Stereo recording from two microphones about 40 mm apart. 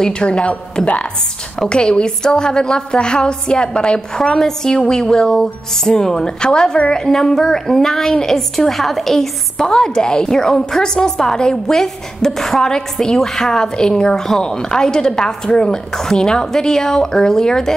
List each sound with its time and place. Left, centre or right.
0.0 s a woman's voice: left
0.8 s a woman's voice: centre
1.6 s a woman's voice: left